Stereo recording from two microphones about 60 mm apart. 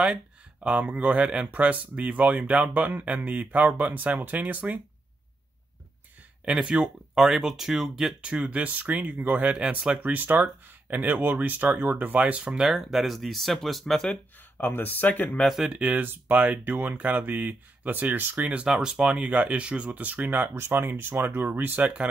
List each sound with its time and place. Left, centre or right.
0.0 s speech: centre
6.4 s speech: centre
8.4 s speech: right; by 14.1 s centre
14.8 s speech: left
15.4 s speech: centre
15.7 s speech: right
18.7 s speech: centre